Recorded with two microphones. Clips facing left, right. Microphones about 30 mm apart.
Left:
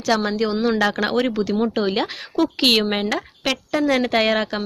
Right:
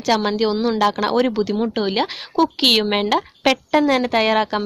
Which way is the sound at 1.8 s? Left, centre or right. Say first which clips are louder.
Right 1 dB; centre.